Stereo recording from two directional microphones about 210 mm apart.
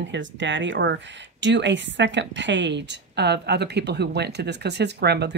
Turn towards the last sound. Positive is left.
turn(degrees=-50)  # may be behind; listen again after turning